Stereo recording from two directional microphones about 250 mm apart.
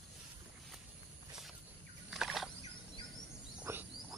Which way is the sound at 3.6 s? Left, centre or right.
Centre.